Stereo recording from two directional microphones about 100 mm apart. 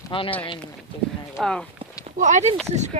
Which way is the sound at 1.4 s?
5° right (ahead or behind).